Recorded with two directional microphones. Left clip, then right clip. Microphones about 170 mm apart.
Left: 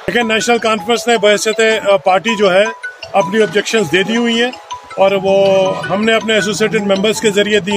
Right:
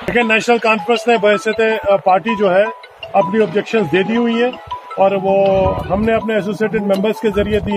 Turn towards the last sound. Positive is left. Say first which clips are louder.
# left 4 dB
turn(degrees=20)  # may be behind; listen again after turning